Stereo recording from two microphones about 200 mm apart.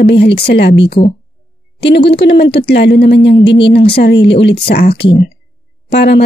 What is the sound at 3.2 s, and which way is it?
Speech, 30° left (ahead or behind).